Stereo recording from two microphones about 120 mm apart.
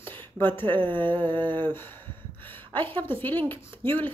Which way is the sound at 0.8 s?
45° right (ahead or behind).